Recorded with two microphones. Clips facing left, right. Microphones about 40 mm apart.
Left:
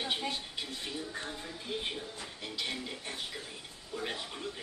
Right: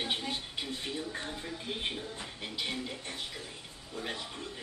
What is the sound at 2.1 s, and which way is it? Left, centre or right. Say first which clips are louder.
Music: right 2 dB; right.